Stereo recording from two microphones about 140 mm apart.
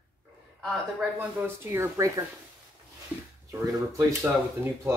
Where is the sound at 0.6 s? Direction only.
Centre (ahead or behind).